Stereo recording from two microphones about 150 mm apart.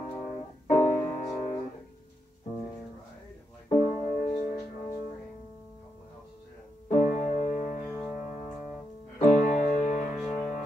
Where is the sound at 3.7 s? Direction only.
50° left (ahead or behind).